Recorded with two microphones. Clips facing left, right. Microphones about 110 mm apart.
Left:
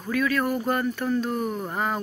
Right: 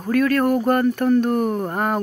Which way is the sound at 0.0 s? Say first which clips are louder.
Right 6 dB; 55° right (ahead or behind).